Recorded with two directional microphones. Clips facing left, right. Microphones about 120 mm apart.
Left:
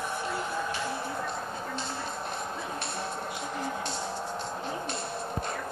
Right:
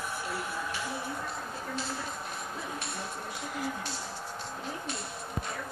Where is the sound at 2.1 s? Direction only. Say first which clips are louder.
Left 4 dB; 30° left (ahead or behind).